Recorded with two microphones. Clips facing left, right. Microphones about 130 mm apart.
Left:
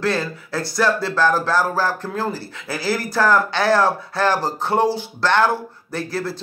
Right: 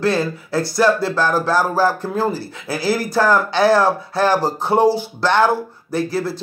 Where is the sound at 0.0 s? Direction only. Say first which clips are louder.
Right 4 dB; 5° right (ahead or behind).